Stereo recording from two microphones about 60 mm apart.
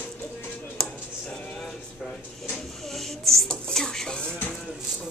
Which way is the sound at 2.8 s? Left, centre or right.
Centre.